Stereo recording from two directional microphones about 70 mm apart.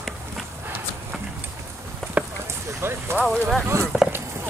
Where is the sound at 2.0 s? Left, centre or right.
Centre.